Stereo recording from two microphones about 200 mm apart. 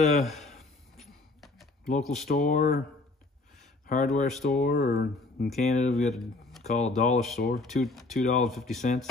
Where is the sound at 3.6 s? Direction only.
35° left (ahead or behind).